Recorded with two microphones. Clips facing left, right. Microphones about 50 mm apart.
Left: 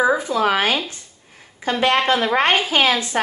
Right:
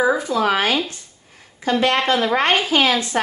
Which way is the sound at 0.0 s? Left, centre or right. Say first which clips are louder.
Even; left.